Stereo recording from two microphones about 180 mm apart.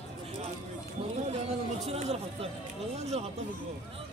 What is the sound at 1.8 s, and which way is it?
Speech, 35° right (ahead or behind).